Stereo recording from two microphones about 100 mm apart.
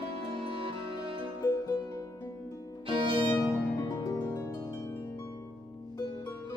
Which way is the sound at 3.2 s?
30° left (ahead or behind).